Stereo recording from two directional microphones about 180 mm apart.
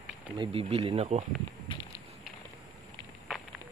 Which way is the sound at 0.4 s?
30° right (ahead or behind).